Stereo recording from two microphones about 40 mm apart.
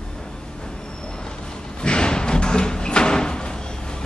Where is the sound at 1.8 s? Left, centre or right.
Left.